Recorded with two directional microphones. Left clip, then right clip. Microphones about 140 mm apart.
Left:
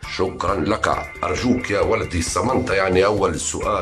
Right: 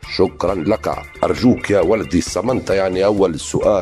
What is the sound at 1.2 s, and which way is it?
Speech, 55° right (ahead or behind).